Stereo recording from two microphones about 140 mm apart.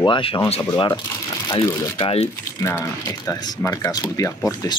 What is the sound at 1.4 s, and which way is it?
Speech, 25° left (ahead or behind).